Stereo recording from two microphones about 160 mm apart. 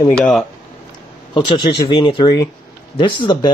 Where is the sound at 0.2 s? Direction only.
5° left (ahead or behind).